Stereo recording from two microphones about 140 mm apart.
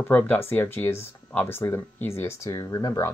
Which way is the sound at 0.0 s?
15° left (ahead or behind).